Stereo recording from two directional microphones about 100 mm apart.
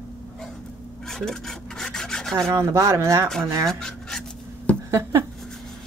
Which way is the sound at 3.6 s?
5° left (ahead or behind).